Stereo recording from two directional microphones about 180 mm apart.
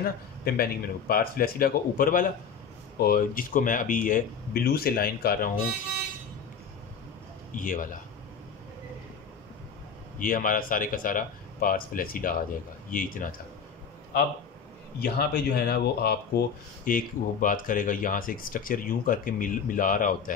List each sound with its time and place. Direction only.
0.6 s speech: 55° left (ahead or behind)
7.5 s speech: 45° left (ahead or behind)
10.1 s speech: 50° left (ahead or behind)
15.0 s speech: 60° left (ahead or behind)